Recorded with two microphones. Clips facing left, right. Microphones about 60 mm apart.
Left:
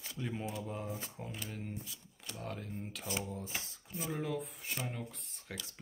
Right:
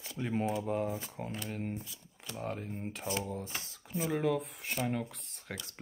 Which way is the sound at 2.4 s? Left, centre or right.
Right.